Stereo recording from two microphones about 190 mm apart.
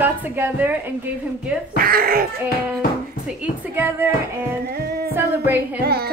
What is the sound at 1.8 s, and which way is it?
Speech, 50° right (ahead or behind).